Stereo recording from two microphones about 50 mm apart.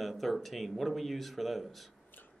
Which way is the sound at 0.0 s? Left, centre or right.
Centre.